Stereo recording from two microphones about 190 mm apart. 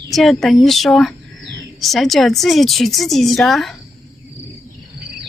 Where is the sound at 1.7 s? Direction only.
Centre (ahead or behind).